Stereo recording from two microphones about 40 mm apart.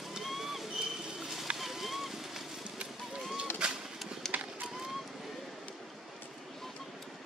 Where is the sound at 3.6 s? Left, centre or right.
Right.